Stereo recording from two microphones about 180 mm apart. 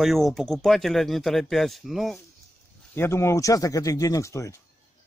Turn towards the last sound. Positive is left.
turn(degrees=15)  # may be behind; listen again after turning